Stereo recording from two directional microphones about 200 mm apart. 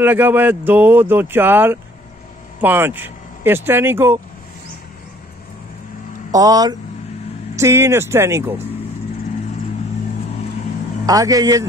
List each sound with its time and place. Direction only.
0.0 s speech: 10° right (ahead or behind)
6.3 s speech: 20° right (ahead or behind)
11.1 s speech: 15° right (ahead or behind)